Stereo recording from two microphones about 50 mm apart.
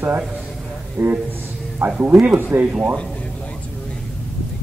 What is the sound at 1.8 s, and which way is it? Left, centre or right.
Speech, right.